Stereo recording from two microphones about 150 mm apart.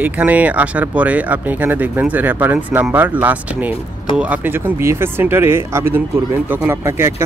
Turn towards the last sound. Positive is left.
turn(degrees=-15)  # may be behind; listen again after turning